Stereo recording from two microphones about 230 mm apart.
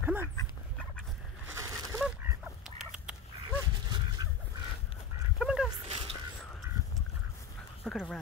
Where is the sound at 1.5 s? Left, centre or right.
Centre.